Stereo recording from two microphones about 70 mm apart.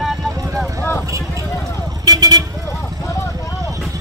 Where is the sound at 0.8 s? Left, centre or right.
Left.